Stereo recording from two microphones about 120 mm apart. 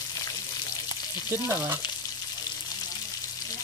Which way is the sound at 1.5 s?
20° right (ahead or behind).